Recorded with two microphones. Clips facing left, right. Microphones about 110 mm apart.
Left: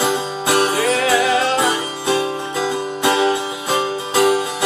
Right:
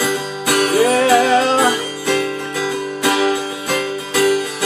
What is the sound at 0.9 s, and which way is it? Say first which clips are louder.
Music: right 4 dB; 35° right (ahead or behind).